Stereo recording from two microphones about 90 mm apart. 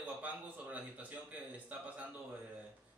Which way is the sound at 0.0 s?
15° right (ahead or behind).